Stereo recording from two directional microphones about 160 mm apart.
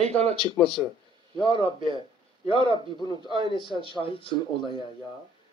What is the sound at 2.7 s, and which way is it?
Speech, 30° right (ahead or behind).